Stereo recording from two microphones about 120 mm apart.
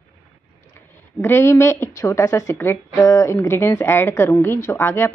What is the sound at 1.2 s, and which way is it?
A woman's voice, 20° left (ahead or behind).